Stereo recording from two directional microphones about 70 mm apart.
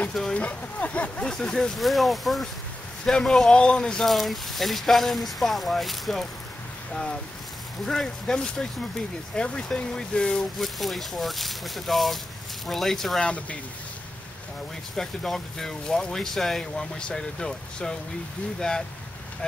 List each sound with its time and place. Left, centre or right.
0.1 s a sound: centre
0.4 s speech: left; by 13.3 s centre
15.0 s speech: centre